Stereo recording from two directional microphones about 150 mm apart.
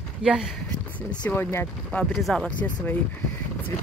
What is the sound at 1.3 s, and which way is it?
Speech, 15° left (ahead or behind).